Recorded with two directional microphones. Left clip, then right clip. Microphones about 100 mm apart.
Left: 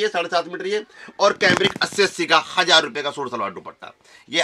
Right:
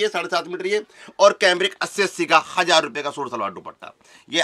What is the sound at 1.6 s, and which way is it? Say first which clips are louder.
Speech: left 3 dB; 30° right (ahead or behind).